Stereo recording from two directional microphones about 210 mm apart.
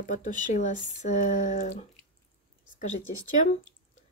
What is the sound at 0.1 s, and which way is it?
Speech, 35° left (ahead or behind).